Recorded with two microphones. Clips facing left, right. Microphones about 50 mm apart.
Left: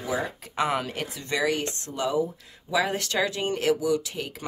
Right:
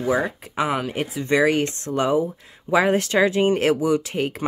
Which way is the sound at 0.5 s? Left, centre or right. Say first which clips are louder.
Right 2 dB; centre.